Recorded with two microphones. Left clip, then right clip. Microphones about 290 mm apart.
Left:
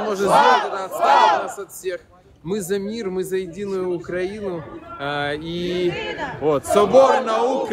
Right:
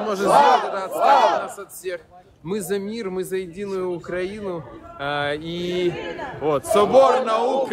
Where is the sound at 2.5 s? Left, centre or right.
Centre.